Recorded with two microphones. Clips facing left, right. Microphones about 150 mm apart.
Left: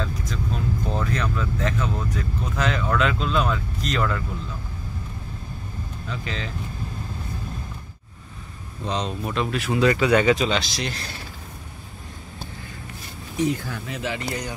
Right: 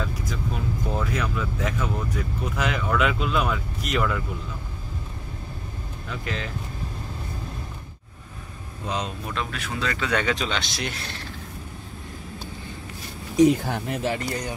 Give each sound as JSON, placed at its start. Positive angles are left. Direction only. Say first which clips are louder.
{"t": 0.0, "sound": "speech", "louder": "left 1 dB", "side_deg": -5}
{"t": 6.0, "sound": "speech", "louder": "right 1 dB", "side_deg": -5}
{"t": 8.8, "sound": "speech", "louder": "left 3 dB", "side_deg": -5}
{"t": 13.7, "sound": "speech", "louder": "right 4 dB", "side_deg": -60}